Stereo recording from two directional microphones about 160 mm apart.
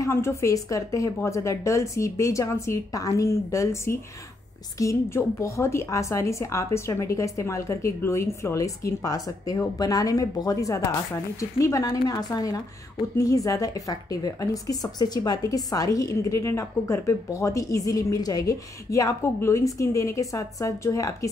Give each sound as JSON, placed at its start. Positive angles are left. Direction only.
{"t": 0.0, "sound": "a woman's voice", "side_deg": 15}